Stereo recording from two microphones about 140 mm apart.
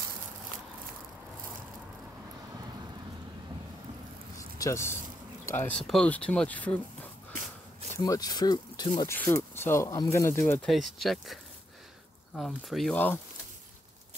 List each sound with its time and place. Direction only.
4.4 s a sound: 20° left (ahead or behind)
5.9 s speech: 5° left (ahead or behind)
8.0 s speech: 30° left (ahead or behind)
9.1 s speech: 15° left (ahead or behind)
10.7 s speech: centre (ahead or behind)
12.4 s speech: centre (ahead or behind)
12.9 s speech: 15° left (ahead or behind)